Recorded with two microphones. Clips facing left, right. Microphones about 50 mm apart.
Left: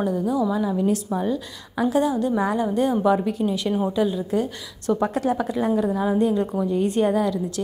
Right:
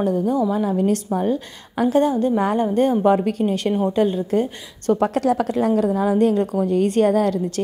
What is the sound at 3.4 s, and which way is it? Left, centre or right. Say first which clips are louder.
A woman's voice: right 3 dB; right.